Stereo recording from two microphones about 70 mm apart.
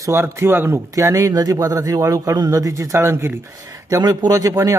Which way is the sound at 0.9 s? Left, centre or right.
Right.